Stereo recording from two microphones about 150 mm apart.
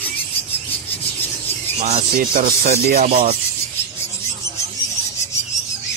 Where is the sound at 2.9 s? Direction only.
90° right.